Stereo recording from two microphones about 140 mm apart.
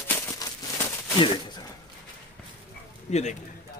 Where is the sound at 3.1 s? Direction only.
55° left (ahead or behind).